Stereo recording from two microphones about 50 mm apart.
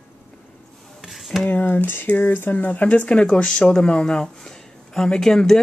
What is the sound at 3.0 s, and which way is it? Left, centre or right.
Speech, left.